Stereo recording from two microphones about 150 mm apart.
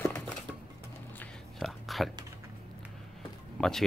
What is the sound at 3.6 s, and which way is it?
Speech, 5° left (ahead or behind).